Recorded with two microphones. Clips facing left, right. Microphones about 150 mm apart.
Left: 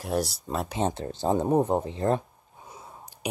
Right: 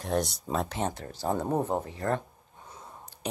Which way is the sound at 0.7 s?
20° left (ahead or behind).